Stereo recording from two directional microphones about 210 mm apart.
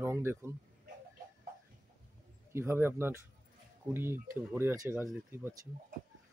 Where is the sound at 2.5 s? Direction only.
10° right (ahead or behind).